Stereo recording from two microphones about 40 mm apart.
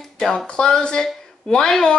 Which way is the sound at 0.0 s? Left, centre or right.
Centre.